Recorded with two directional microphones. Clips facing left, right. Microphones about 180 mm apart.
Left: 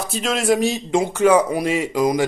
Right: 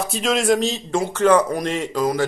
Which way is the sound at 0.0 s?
Centre (ahead or behind).